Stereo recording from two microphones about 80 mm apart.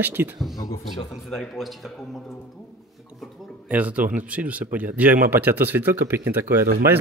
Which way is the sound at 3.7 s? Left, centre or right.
Centre.